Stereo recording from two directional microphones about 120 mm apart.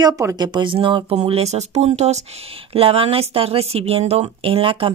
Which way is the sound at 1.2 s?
60° right (ahead or behind).